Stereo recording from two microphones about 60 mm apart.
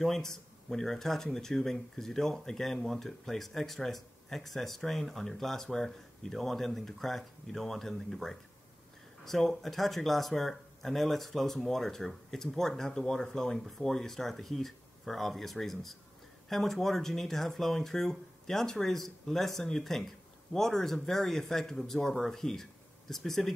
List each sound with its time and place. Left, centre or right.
0.0 s speech: centre